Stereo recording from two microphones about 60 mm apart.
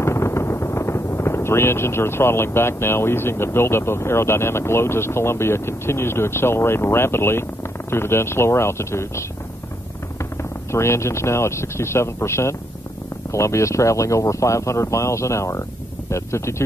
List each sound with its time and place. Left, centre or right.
0.0 s speech: left
10.7 s speech: left